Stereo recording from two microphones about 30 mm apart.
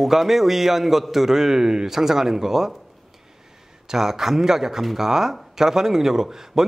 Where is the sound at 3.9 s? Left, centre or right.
Centre.